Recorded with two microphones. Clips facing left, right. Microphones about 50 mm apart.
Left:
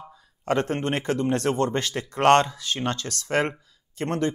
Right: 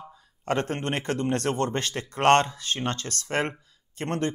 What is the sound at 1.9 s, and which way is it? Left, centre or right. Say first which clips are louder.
Speech: left 2 dB; centre.